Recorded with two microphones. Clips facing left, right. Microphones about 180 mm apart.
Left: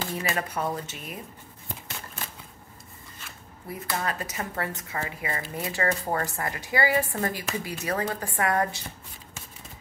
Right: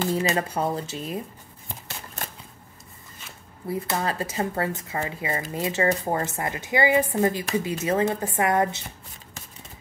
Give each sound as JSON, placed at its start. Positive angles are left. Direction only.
{"t": 0.1, "sound": "speech", "side_deg": -25}
{"t": 3.8, "sound": "speech", "side_deg": -30}